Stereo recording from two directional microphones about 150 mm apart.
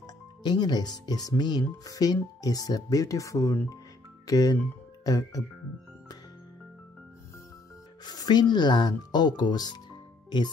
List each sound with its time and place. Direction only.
0.0 s speech: 30° left (ahead or behind)
8.0 s speech: 25° left (ahead or behind)